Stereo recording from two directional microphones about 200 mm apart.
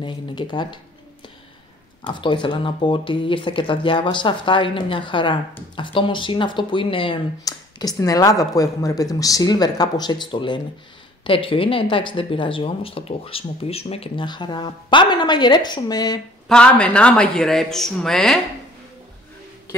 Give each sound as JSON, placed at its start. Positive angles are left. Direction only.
{"t": 0.0, "sound": "speech", "side_deg": 25}
{"t": 2.0, "sound": "speech", "side_deg": 25}
{"t": 16.4, "sound": "speech", "side_deg": 5}